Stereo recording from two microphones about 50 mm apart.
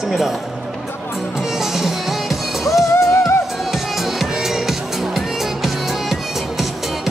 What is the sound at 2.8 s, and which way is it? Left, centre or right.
Music, left.